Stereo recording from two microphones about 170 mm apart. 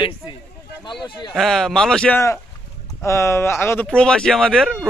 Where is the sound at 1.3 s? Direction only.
Centre (ahead or behind).